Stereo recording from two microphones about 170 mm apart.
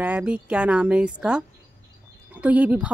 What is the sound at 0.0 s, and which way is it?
Speech, 10° right (ahead or behind).